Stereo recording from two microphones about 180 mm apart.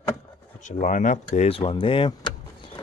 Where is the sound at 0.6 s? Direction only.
45° left (ahead or behind).